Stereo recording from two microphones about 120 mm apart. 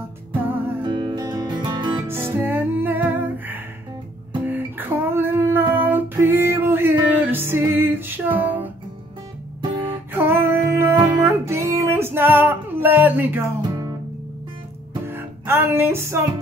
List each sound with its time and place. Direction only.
0.8 s music: 35° right (ahead or behind)
2.0 s music: 20° right (ahead or behind)
4.5 s a sound: 15° right (ahead or behind)
9.8 s music: 15° right (ahead or behind)
13.6 s music: 35° right (ahead or behind)
15.0 s music: 20° right (ahead or behind)